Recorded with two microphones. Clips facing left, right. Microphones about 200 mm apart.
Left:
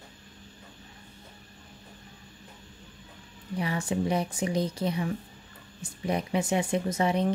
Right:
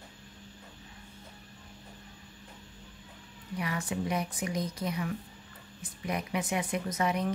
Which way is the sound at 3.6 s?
30° left (ahead or behind).